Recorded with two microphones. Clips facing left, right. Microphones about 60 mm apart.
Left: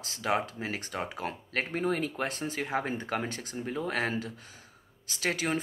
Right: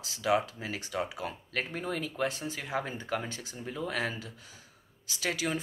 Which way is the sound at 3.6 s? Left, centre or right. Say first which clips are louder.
Left 2 dB; left.